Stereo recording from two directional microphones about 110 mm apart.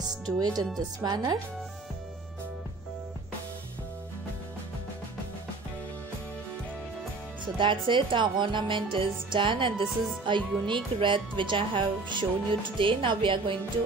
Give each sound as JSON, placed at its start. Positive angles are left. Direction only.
{"t": 0.4, "sound": "speech", "side_deg": -35}
{"t": 7.5, "sound": "speech", "side_deg": -50}